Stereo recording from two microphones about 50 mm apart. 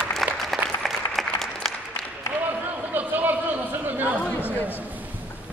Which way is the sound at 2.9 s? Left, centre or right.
Right.